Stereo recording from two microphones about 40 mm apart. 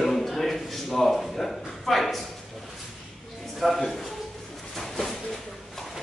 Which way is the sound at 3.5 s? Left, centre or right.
Centre.